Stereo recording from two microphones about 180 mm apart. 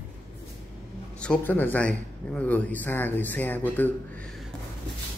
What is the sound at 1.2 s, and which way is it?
A man's voice, 10° left (ahead or behind).